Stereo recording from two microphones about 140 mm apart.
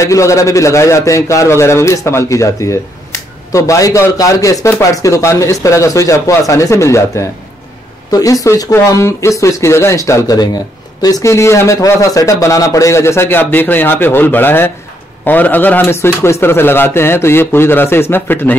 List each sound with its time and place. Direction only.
0.0 s a man's voice: 20° left (ahead or behind)